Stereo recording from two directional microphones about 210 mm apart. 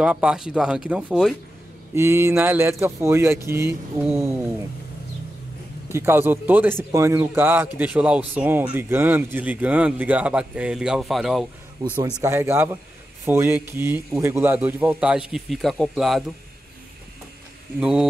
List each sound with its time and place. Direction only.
0.0 s speech: 5° right (ahead or behind)
5.9 s speech: 10° right (ahead or behind)
11.8 s speech: 20° right (ahead or behind); by 16.3 s centre (ahead or behind)
17.7 s speech: 5° right (ahead or behind)